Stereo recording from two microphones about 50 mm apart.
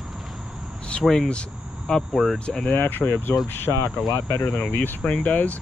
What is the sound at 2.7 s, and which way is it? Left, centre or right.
Speech, left.